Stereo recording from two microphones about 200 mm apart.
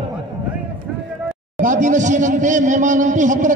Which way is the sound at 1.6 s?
40° right (ahead or behind).